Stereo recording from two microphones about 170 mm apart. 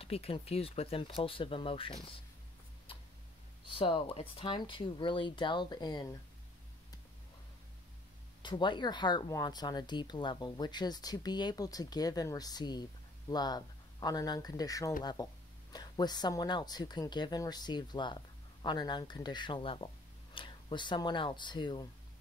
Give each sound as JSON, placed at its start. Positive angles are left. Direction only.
{"t": 0.0, "sound": "speech", "side_deg": 35}
{"t": 3.6, "sound": "speech", "side_deg": 30}
{"t": 8.4, "sound": "speech", "side_deg": 25}